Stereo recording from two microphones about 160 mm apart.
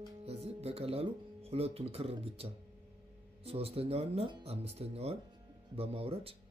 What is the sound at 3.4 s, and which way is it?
Speech, 40° right (ahead or behind).